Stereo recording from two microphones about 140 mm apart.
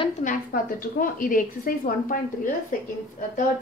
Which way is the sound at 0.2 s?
80° left.